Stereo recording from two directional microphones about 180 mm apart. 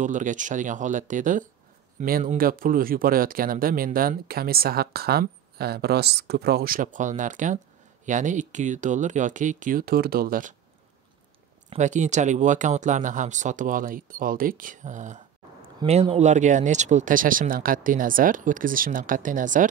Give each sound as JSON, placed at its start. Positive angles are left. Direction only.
{"t": 0.0, "sound": "speech", "side_deg": -45}
{"t": 11.7, "sound": "speech", "side_deg": -40}